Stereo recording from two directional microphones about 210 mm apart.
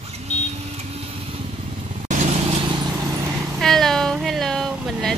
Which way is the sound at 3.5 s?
Centre (ahead or behind).